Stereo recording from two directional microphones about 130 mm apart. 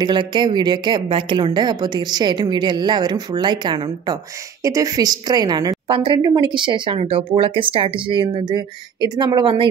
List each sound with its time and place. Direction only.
0.0 s a woman's voice: 35° right (ahead or behind)
5.9 s speech: 40° right (ahead or behind)